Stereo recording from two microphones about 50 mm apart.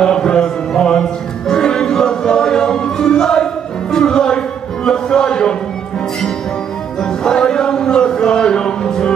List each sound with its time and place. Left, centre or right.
0.0 s music: centre
7.0 s music: centre